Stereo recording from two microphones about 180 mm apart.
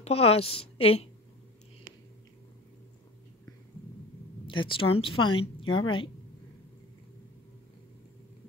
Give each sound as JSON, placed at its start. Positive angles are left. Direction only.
{"t": 0.0, "sound": "a woman's voice", "side_deg": 35}
{"t": 4.5, "sound": "a woman's voice", "side_deg": 30}